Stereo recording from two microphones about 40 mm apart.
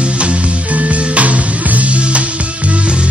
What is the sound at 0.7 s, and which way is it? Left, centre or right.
Music, right.